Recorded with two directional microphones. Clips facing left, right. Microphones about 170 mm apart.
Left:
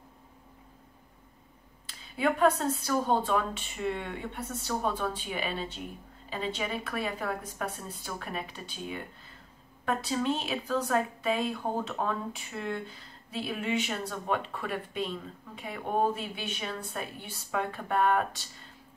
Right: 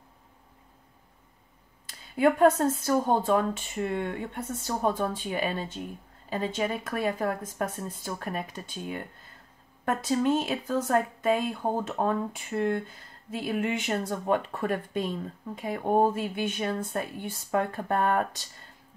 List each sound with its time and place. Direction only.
1.9 s speech: 45° right (ahead or behind)